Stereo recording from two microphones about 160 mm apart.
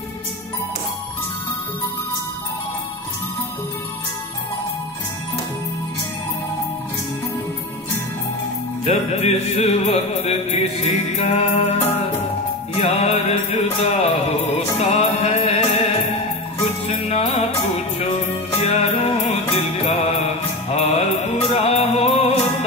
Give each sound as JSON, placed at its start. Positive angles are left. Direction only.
{"t": 8.8, "sound": "music", "side_deg": 40}
{"t": 12.7, "sound": "music", "side_deg": 40}
{"t": 18.6, "sound": "music", "side_deg": 40}